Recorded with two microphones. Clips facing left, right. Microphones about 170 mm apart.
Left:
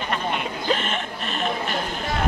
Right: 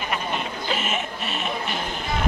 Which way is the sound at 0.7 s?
5° right (ahead or behind).